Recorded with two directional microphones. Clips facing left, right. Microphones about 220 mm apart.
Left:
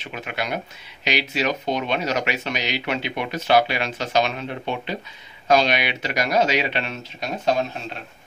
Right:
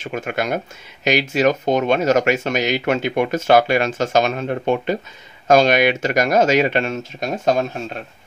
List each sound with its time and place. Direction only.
0.0 s speech: 45° right (ahead or behind)